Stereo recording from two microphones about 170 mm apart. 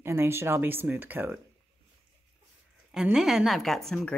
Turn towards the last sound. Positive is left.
turn(degrees=0)  # may be behind; listen again after turning